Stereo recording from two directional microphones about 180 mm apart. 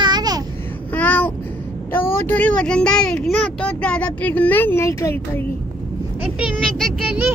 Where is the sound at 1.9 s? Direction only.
10° left (ahead or behind).